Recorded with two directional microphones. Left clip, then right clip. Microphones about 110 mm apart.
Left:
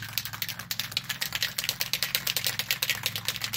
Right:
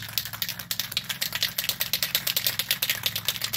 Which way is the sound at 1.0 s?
25° left (ahead or behind).